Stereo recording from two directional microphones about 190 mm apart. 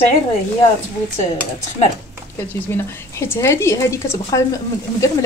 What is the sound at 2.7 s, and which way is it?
Speech, 10° left (ahead or behind).